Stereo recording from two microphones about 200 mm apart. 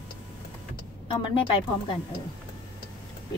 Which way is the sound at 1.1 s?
25° left (ahead or behind).